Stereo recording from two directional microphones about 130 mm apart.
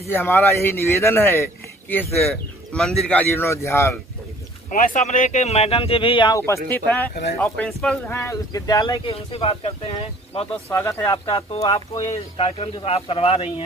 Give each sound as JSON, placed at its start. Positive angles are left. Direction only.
{"t": 0.1, "sound": "a man's voice", "side_deg": 15}
{"t": 2.7, "sound": "a man's voice", "side_deg": 5}
{"t": 4.6, "sound": "speech", "side_deg": 90}
{"t": 6.3, "sound": "a man's voice", "side_deg": 20}
{"t": 8.1, "sound": "speech", "side_deg": 25}
{"t": 9.0, "sound": "speech", "side_deg": 45}
{"t": 10.7, "sound": "speech", "side_deg": 20}
{"t": 12.0, "sound": "speech", "side_deg": 50}